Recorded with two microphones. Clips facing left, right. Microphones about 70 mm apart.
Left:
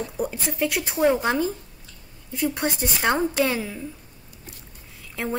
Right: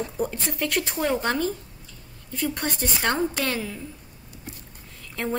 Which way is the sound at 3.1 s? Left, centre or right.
Centre.